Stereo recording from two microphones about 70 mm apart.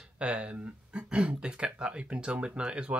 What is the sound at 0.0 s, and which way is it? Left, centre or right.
Speech, centre.